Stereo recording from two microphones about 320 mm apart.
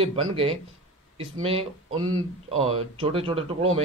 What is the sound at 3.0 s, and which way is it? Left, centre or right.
Speech, centre.